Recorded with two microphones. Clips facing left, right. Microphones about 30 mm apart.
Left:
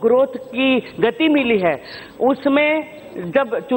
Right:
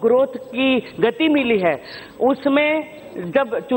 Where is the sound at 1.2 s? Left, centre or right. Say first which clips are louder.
Left 2 dB; left.